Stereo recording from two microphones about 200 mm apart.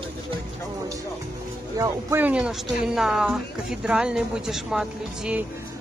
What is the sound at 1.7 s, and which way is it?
Speech, 15° right (ahead or behind).